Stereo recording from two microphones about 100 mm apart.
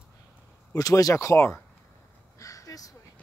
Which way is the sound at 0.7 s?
35° left (ahead or behind).